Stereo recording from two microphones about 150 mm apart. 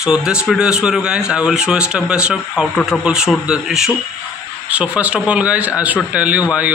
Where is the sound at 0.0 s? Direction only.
5° right (ahead or behind).